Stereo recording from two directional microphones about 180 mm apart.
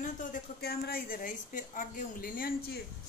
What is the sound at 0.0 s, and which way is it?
A woman's voice, 45° left (ahead or behind).